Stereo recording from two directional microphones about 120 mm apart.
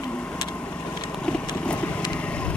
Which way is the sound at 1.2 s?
10° left (ahead or behind).